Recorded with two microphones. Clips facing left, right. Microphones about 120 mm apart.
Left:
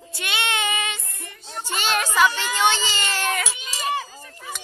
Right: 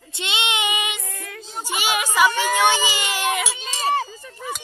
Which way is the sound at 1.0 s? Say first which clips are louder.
Right 6 dB; 90° right.